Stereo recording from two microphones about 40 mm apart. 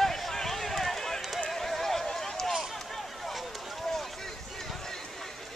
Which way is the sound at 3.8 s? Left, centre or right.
Centre.